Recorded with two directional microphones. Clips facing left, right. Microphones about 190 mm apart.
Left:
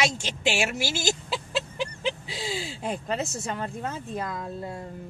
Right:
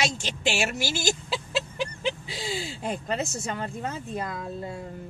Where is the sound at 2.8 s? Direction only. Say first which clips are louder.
Even; centre (ahead or behind).